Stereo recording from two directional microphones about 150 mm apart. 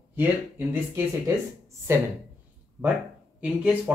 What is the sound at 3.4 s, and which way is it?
Speech, 10° right (ahead or behind).